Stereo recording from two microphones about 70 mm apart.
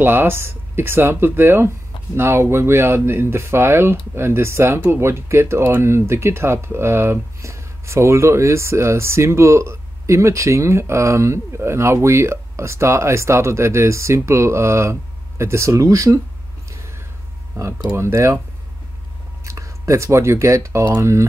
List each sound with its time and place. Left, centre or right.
0.0 s speech: right
17.6 s speech: right
17.9 s speech: right
19.4 s speech: right